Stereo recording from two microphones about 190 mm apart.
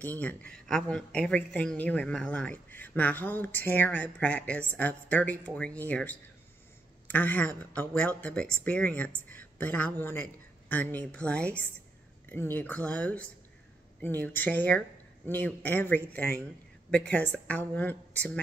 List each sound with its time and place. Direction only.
0.0 s speech: 10° left (ahead or behind)